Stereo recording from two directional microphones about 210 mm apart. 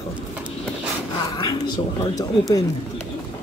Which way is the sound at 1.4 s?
20° left (ahead or behind).